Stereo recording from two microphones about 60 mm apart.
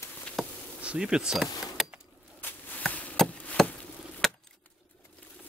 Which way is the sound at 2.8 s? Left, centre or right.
Left.